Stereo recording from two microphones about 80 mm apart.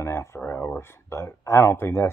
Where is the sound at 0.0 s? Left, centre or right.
Left.